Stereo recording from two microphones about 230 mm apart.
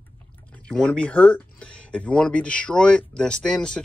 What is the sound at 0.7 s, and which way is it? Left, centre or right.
Speech, centre.